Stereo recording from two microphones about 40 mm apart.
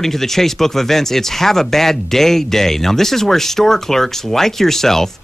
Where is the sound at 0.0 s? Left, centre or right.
Centre.